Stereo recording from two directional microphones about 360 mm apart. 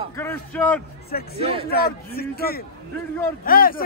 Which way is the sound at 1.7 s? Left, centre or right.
Left.